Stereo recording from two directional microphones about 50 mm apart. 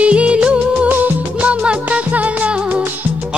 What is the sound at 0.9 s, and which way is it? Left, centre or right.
Music, right.